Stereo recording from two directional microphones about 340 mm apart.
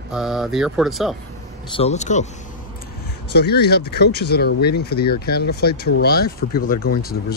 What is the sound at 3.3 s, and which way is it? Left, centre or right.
Speech, left.